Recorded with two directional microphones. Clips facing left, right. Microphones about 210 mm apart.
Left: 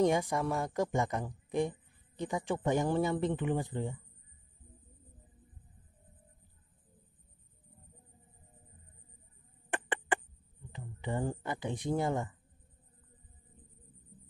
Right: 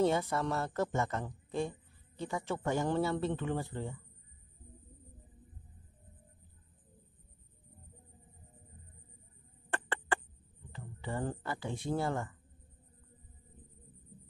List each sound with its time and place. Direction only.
0.0 s speech: 15° left (ahead or behind)
9.7 s a sound: 15° left (ahead or behind)
10.7 s speech: 15° left (ahead or behind)